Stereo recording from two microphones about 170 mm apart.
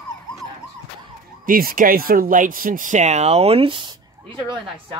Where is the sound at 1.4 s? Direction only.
60° right (ahead or behind); by 3.9 s 30° right (ahead or behind).